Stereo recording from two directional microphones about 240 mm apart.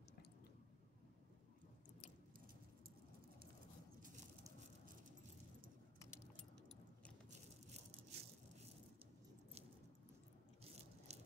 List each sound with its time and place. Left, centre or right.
7.2 s rattle: right
10.6 s biting: right